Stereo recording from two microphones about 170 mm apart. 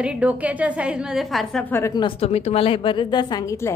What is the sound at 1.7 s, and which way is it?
Speech, 15° left (ahead or behind).